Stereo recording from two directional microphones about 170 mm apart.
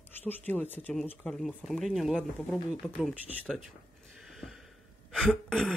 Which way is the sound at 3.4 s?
Centre (ahead or behind).